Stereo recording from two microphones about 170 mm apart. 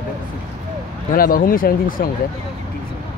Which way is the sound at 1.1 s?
55° left (ahead or behind).